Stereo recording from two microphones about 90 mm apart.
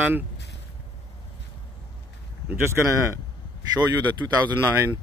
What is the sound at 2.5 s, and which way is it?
Speech, 20° right (ahead or behind).